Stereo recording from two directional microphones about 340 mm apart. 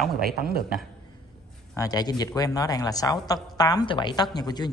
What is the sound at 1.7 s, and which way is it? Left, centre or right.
Speech, centre.